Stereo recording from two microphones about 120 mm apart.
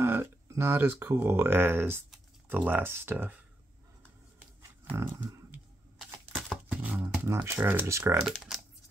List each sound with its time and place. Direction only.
0.0 s speech: 20° right (ahead or behind)
4.9 s speech: 25° right (ahead or behind)
5.9 s a sound: 5° right (ahead or behind)
7.2 s speech: 25° right (ahead or behind)